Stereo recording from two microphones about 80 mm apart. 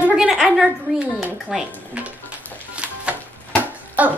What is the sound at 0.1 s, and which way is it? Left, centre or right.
Speech, centre.